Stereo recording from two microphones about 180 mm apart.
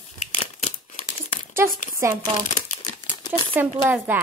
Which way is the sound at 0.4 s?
40° left (ahead or behind).